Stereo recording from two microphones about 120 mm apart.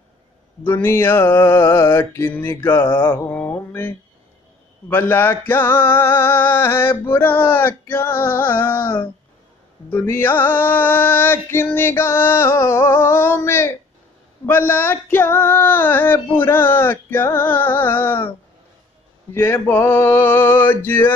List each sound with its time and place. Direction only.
0.7 s music: 20° left (ahead or behind)
14.4 s female singing: 20° left (ahead or behind)
19.3 s music: 20° left (ahead or behind)